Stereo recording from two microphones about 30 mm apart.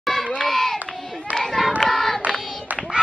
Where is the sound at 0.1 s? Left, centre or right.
Centre.